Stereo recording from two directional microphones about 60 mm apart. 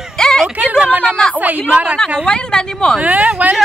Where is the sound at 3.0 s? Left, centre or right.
Right.